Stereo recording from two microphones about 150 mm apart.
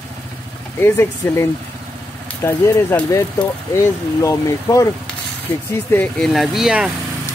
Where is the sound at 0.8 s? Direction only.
15° left (ahead or behind).